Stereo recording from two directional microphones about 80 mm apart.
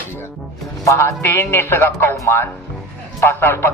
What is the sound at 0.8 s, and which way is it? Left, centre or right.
A man's voice, left.